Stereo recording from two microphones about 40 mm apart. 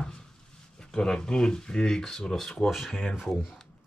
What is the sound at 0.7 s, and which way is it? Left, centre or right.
Speech, centre.